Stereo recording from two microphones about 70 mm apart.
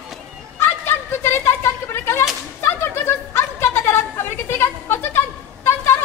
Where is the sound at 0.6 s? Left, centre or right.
Left.